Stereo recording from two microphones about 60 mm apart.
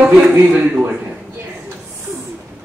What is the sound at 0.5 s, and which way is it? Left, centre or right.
Speech, right.